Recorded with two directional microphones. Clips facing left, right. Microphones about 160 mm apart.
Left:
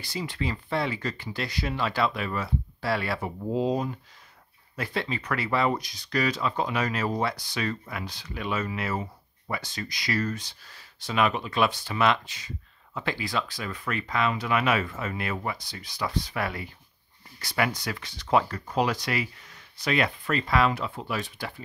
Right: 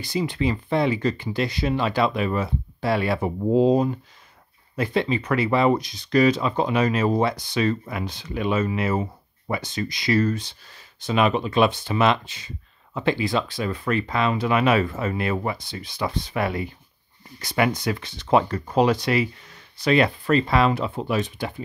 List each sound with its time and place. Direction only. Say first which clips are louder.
0.0 s speech: right 8 dB; 20° right (ahead or behind)